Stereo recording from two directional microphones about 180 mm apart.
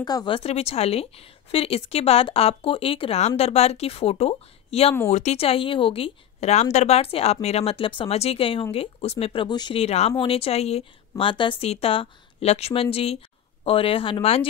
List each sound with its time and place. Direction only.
0.0 s speech: 25° left (ahead or behind)